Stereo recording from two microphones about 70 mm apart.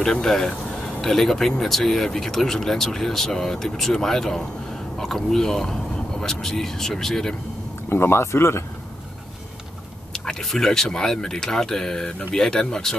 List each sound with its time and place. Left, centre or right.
0.0 s speech: centre
7.9 s speech: left
10.1 s speech: centre